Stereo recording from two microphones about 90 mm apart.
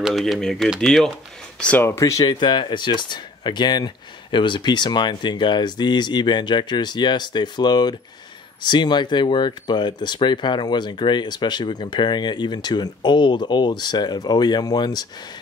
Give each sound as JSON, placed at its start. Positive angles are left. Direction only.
{"t": 0.0, "sound": "speech", "side_deg": 0}
{"t": 1.6, "sound": "speech", "side_deg": 15}
{"t": 1.9, "sound": "speech", "side_deg": 35}
{"t": 2.2, "sound": "speech", "side_deg": 55}